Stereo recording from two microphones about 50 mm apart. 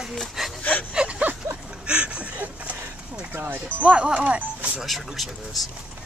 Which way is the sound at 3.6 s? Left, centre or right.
Right.